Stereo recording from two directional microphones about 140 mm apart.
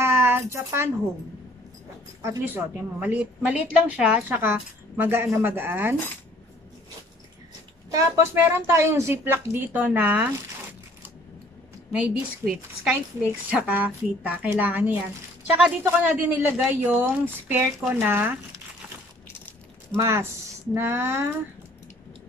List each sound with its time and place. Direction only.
0.0 s a sound: 15° right (ahead or behind)
2.2 s a woman's voice: 15° right (ahead or behind)
7.9 s a woman's voice: 15° right (ahead or behind)
11.9 s a woman's voice: 5° right (ahead or behind)
19.2 s crushing: 15° left (ahead or behind)
20.0 s a woman's voice: 20° right (ahead or behind)